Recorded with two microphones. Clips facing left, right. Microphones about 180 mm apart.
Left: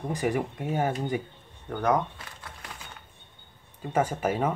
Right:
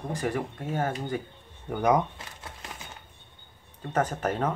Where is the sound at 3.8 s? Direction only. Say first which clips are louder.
Left 1 dB; 10° left (ahead or behind).